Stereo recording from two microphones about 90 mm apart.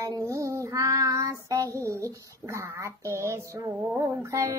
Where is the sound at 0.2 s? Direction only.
30° right (ahead or behind).